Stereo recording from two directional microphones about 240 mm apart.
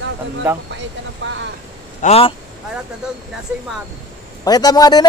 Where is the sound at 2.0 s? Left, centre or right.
Left.